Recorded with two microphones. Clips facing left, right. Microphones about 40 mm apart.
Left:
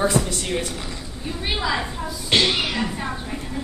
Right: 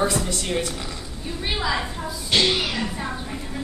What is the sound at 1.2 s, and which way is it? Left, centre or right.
Speech, centre.